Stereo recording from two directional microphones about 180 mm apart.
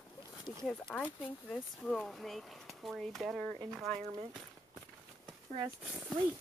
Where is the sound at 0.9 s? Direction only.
5° left (ahead or behind).